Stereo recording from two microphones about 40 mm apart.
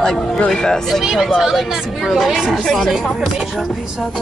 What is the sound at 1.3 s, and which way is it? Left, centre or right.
Speech, centre.